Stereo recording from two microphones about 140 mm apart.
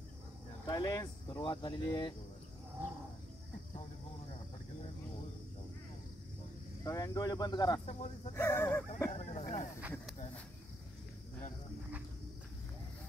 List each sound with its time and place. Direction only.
0.7 s speech: 25° left (ahead or behind)
6.8 s speech: 25° left (ahead or behind)
8.4 s speech: 20° left (ahead or behind)
9.1 s speech: 55° left (ahead or behind)
9.8 s speech: 10° right (ahead or behind)